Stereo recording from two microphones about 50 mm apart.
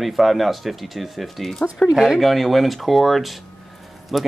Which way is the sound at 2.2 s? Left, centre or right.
Centre.